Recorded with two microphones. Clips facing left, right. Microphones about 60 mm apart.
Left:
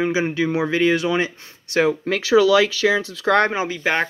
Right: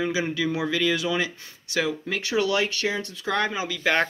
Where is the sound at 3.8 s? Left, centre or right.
Centre.